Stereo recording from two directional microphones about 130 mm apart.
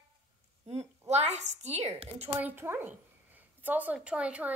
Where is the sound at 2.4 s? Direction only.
15° right (ahead or behind).